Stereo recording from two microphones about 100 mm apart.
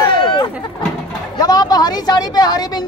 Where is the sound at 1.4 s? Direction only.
40° left (ahead or behind).